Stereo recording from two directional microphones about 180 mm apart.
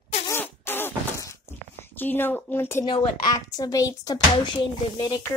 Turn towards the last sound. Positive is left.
turn(degrees=20)  # may be behind; listen again after turning